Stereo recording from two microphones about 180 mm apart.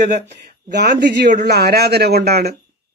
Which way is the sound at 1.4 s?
65° right (ahead or behind).